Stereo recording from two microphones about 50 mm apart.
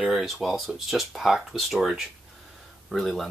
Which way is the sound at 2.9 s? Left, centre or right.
Centre.